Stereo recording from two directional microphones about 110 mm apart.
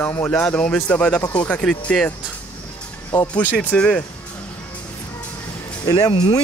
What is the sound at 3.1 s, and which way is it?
Speech, 15° left (ahead or behind).